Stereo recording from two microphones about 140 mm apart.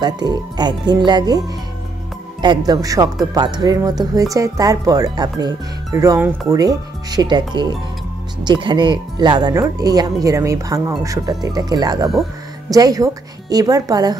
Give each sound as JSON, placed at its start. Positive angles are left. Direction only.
{"t": 0.0, "sound": "speech", "side_deg": -30}
{"t": 2.4, "sound": "speech", "side_deg": -30}